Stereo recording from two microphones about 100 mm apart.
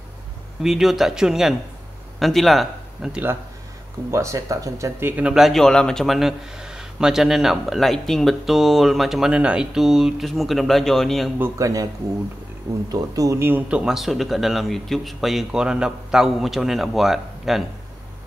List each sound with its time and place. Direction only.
0.6 s a man's voice: 5° right (ahead or behind)
4.1 s speech: 30° right (ahead or behind)
5.1 s a man's voice: 10° right (ahead or behind)
11.3 s a man's voice: 20° right (ahead or behind)
11.6 s speech: 35° right (ahead or behind)
12.9 s speech: 35° right (ahead or behind)
13.4 s a man's voice: 20° right (ahead or behind); by 17.6 s 5° right (ahead or behind)